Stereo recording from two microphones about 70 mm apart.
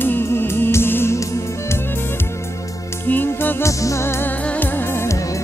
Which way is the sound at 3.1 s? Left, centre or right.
Left.